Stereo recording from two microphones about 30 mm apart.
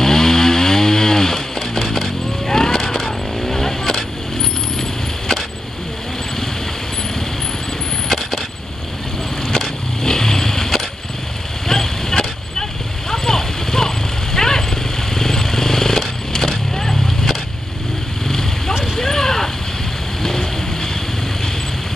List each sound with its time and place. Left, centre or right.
0.0 s chainsaw: centre
10.0 s vehicle: centre
13.1 s clip-clop: centre
15.1 s vehicle: centre
18.9 s a sound: centre
20.2 s vehicle: centre